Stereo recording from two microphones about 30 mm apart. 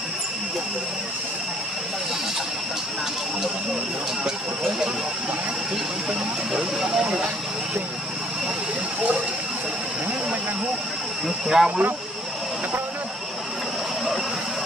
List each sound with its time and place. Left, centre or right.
6.5 s speech: centre
11.4 s speech: centre